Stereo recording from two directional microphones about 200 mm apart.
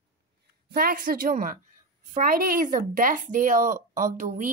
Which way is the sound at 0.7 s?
45° right (ahead or behind).